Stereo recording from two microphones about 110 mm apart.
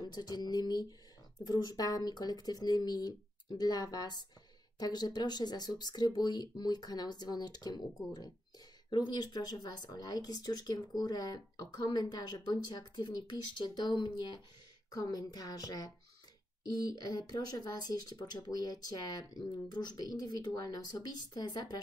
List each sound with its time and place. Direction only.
0.0 s speech: 35° left (ahead or behind)
17.1 s speech: 40° left (ahead or behind)